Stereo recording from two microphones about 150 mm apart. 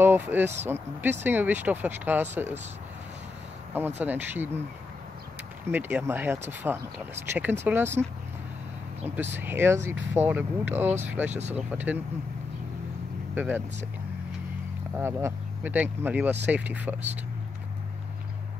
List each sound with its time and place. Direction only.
0.0 s speech: 15° right (ahead or behind)
3.7 s speech: 10° right (ahead or behind)
5.7 s speech: 15° right (ahead or behind)
7.2 s speech: 50° right (ahead or behind)
7.6 s speech: 15° right (ahead or behind)
9.0 s speech: 10° right (ahead or behind)
13.3 s speech: 10° right (ahead or behind)
15.0 s speech: 15° right (ahead or behind)